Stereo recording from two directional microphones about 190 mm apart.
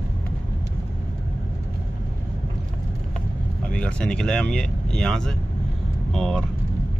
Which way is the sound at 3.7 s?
5° left (ahead or behind).